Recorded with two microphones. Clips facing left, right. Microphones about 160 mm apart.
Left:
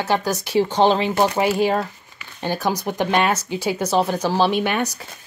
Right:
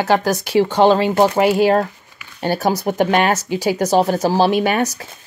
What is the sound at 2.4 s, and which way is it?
Speech, 50° right (ahead or behind).